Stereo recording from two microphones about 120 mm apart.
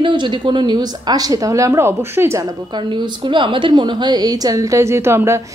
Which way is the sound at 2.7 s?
40° right (ahead or behind).